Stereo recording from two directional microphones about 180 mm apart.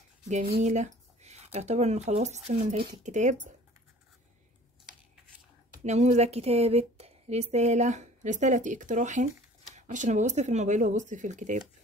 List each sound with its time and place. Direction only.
0.3 s speech: 40° right (ahead or behind)
5.9 s speech: 40° right (ahead or behind)